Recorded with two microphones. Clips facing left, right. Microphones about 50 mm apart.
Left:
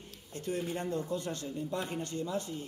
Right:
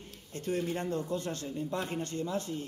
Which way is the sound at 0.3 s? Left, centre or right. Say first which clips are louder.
Right 2 dB; right.